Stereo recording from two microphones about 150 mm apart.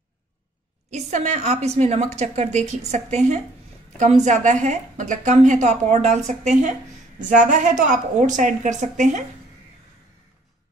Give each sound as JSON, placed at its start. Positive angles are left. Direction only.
{"t": 0.8, "sound": "a woman's voice", "side_deg": -50}